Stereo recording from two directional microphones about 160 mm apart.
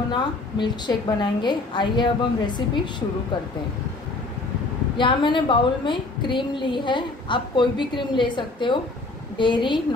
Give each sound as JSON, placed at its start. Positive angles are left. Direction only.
{"t": 0.1, "sound": "a woman's voice", "side_deg": 30}
{"t": 4.9, "sound": "a woman's voice", "side_deg": 30}